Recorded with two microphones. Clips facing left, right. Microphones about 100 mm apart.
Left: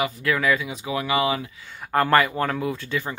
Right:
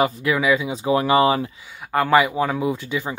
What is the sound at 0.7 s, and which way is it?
Speech, 35° right (ahead or behind).